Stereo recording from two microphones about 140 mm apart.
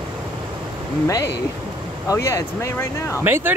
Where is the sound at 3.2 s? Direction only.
15° right (ahead or behind).